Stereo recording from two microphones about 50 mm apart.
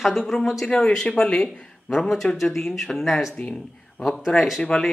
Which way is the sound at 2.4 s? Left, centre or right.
Centre.